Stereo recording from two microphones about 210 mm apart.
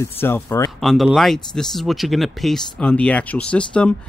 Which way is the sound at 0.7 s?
Centre (ahead or behind).